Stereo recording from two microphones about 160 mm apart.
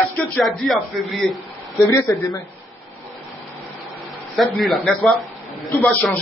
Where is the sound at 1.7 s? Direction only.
15° left (ahead or behind).